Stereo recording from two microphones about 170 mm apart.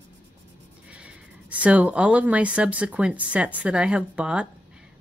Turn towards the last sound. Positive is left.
turn(degrees=-5)  # may be behind; listen again after turning